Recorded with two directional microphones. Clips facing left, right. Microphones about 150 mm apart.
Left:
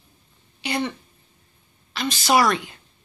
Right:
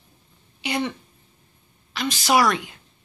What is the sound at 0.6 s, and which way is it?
A woman's voice, 10° right (ahead or behind).